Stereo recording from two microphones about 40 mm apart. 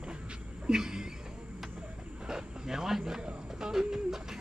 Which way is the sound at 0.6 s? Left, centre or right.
Centre.